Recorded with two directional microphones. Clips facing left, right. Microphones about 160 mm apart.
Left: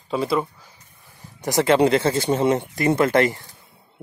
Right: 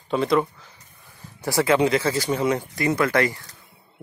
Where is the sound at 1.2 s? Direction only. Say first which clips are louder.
Left 1 dB; 15° left (ahead or behind).